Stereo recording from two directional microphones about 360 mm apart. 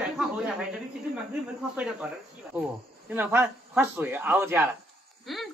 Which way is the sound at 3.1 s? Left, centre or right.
Centre.